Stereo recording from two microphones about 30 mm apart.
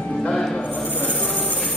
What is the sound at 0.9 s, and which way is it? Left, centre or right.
Rub, left.